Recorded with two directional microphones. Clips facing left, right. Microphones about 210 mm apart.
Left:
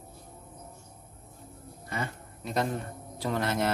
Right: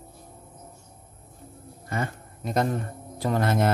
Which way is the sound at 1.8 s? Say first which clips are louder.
Right 5 dB; 45° right (ahead or behind).